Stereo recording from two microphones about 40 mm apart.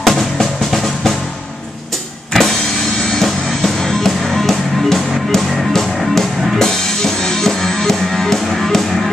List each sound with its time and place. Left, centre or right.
0.0 s music: centre
3.1 s music: centre